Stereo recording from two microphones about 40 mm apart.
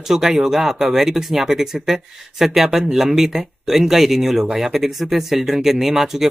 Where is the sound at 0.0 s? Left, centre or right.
Centre.